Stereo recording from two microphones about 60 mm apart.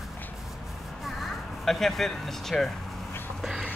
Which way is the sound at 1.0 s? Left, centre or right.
Centre.